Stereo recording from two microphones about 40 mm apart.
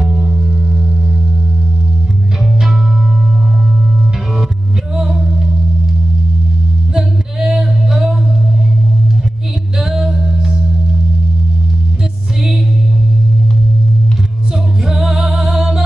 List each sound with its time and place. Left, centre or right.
0.3 s music: centre
2.4 s music: centre
4.9 s music: centre
6.9 s music: centre
9.8 s music: centre
14.5 s music: centre